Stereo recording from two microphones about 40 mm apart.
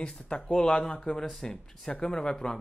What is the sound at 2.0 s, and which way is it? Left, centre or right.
Speech, left.